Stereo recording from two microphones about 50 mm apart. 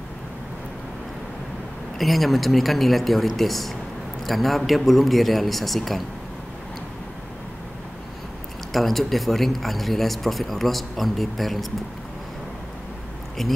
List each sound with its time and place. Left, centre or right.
2.0 s speech: centre
8.7 s speech: centre
13.4 s speech: centre